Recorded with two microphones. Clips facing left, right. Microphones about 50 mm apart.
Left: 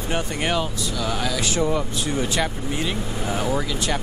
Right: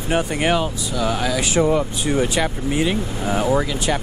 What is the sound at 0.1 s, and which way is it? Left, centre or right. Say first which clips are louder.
Speech: right 5 dB; centre.